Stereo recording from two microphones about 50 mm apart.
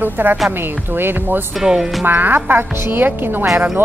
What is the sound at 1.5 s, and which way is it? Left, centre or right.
Speech, centre.